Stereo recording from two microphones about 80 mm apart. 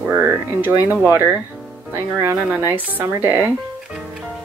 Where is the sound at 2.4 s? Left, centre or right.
Right.